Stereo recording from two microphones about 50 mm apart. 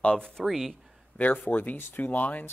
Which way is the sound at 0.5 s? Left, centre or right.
Centre.